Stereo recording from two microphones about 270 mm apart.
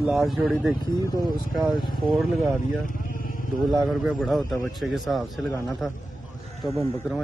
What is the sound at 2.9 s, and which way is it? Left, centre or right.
Vehicle, left.